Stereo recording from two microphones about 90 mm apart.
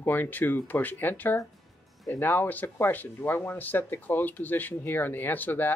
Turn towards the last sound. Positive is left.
turn(degrees=20)  # may be behind; listen again after turning